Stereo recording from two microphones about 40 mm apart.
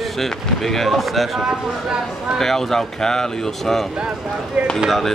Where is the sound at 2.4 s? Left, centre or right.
Centre.